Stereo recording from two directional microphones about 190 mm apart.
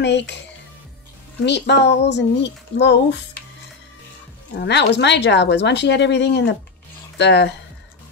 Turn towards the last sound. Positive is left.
turn(degrees=65)  # may be behind; listen again after turning